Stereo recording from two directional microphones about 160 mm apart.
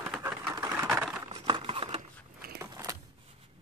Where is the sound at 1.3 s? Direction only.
30° right (ahead or behind).